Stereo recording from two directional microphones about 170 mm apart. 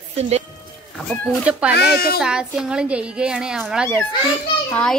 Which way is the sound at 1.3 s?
5° right (ahead or behind).